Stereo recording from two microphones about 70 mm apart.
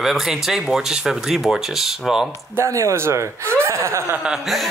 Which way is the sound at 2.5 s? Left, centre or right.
Right.